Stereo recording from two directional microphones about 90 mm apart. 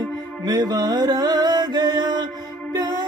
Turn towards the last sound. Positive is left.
turn(degrees=-45)  # may be behind; listen again after turning